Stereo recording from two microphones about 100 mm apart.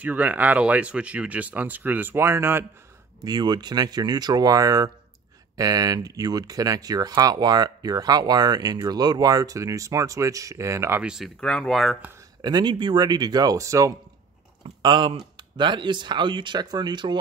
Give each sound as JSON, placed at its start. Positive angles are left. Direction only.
{"t": 0.0, "sound": "speech", "side_deg": -15}
{"t": 3.3, "sound": "speech", "side_deg": -45}
{"t": 11.0, "sound": "speech", "side_deg": -5}
{"t": 11.4, "sound": "speech", "side_deg": 10}
{"t": 12.4, "sound": "speech", "side_deg": -45}
{"t": 14.8, "sound": "speech", "side_deg": -50}